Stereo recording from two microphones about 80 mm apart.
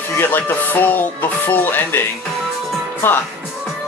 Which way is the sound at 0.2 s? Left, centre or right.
Left.